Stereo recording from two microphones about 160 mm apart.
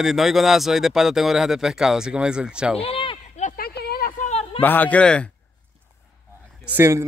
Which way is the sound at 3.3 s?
50° left (ahead or behind).